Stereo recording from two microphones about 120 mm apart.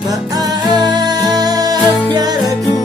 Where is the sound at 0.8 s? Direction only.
35° right (ahead or behind).